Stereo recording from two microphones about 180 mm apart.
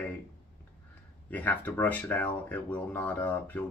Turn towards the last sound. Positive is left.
turn(degrees=10)  # may be behind; listen again after turning